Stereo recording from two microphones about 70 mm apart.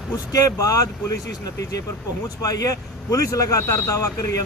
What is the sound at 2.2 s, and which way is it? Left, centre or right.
Speech, left.